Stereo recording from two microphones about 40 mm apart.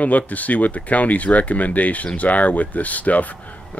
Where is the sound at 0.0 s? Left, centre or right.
Left.